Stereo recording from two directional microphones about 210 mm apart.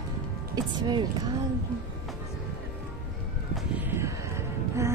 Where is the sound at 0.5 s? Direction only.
20° right (ahead or behind).